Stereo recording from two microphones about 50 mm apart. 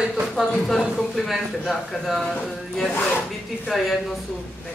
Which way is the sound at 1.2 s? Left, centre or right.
Centre.